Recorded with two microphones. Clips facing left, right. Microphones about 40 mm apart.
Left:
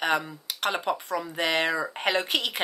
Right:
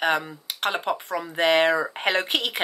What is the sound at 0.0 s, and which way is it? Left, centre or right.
Speech, centre.